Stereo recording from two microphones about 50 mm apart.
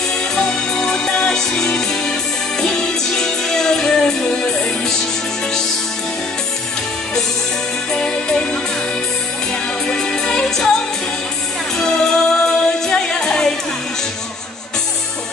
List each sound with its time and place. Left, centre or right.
0.5 s music: centre
3.2 s music: centre
7.9 s music: centre
9.8 s music: centre
11.8 s music: centre